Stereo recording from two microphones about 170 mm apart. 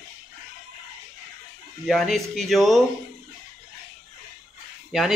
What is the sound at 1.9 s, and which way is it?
Speech, centre (ahead or behind).